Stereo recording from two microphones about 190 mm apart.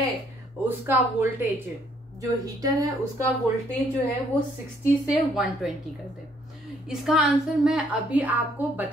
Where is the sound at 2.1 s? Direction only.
20° right (ahead or behind).